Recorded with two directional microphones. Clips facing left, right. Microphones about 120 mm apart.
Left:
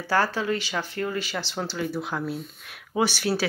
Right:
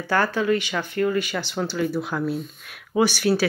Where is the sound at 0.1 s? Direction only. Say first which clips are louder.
Right 3 dB; 30° left (ahead or behind).